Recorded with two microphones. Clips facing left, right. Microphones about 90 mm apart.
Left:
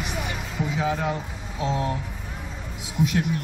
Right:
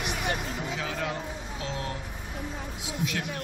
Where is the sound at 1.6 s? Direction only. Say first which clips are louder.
Left 10 dB; 20° left (ahead or behind).